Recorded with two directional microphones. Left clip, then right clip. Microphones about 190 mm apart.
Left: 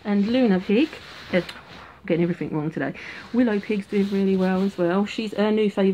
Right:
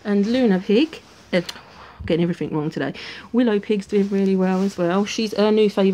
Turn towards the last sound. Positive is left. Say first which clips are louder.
# right 4 dB
turn(degrees=-45)  # may be behind; listen again after turning